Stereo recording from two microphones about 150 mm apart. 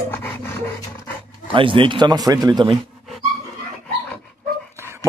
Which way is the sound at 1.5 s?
35° right (ahead or behind).